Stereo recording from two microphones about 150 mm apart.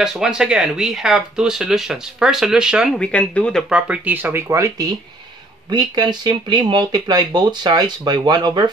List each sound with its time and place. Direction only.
0.0 s speech: 5° right (ahead or behind)
3.0 s speech: 10° left (ahead or behind)
3.7 s speech: 10° right (ahead or behind); by 8.6 s 30° right (ahead or behind)